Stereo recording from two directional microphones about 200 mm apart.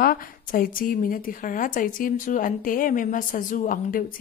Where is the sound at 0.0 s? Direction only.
45° left (ahead or behind).